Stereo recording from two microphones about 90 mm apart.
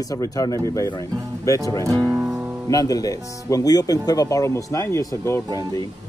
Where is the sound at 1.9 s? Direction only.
35° right (ahead or behind).